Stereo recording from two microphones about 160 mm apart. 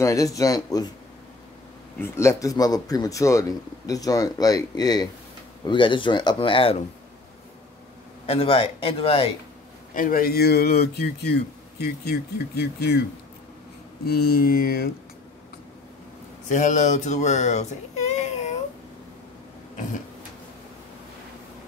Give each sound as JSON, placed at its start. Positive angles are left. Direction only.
{"t": 0.0, "sound": "a man's voice", "side_deg": 20}
{"t": 2.0, "sound": "a man's voice", "side_deg": 15}
{"t": 8.3, "sound": "speech", "side_deg": 35}
{"t": 9.9, "sound": "speech", "side_deg": 60}
{"t": 14.0, "sound": "speech", "side_deg": 65}
{"t": 16.4, "sound": "speech", "side_deg": 50}
{"t": 19.7, "sound": "throat clearing", "side_deg": 45}